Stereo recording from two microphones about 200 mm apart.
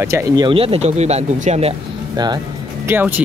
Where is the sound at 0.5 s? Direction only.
25° right (ahead or behind).